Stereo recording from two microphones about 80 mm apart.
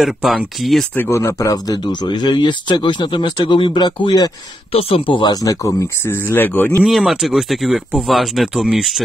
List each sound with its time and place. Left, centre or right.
0.0 s speech: centre
0.9 s speech: left
1.8 s speech: left
5.0 s speech: left
5.3 s speech: left
6.9 s speech: centre